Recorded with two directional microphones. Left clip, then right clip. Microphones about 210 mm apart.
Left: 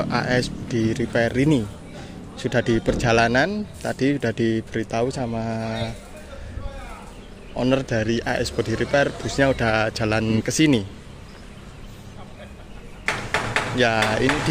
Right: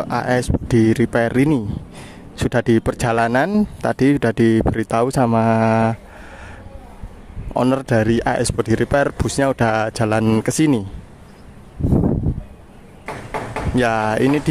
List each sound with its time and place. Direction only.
0.0 s speech: 25° right (ahead or behind); by 5.9 s 45° right (ahead or behind)
7.5 s speech: 45° right (ahead or behind)
13.0 s a sound: centre (ahead or behind)
13.7 s speech: 35° right (ahead or behind)